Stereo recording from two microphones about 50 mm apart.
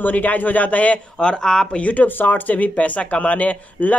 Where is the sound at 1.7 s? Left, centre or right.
Left.